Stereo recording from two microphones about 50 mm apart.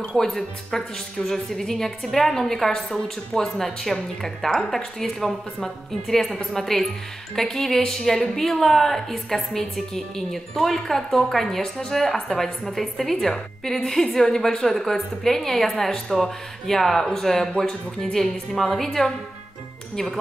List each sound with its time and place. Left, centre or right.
0.2 s a woman's voice: centre
17.5 s speech: centre
18.1 s a woman's voice: centre